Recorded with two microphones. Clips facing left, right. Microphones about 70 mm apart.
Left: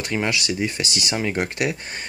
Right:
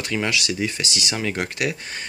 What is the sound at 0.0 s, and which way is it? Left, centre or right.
Speech, left.